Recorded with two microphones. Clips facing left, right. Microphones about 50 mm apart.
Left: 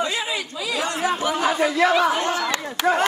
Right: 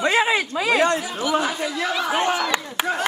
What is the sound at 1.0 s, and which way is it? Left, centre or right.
Speech, left.